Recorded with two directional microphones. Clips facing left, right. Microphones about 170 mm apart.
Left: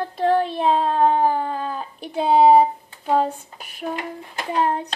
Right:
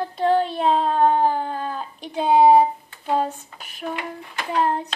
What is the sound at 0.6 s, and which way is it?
Speech, centre (ahead or behind).